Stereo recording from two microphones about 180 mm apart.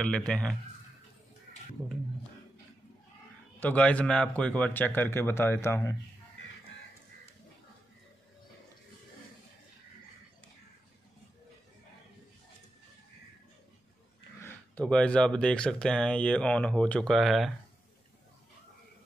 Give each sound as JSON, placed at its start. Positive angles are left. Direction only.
{"t": 0.3, "sound": "speech", "side_deg": 5}
{"t": 3.5, "sound": "speech", "side_deg": 10}
{"t": 14.4, "sound": "speech", "side_deg": 5}